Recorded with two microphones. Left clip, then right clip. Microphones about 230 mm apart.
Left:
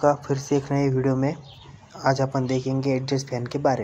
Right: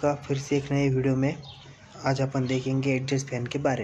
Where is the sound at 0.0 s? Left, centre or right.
Centre.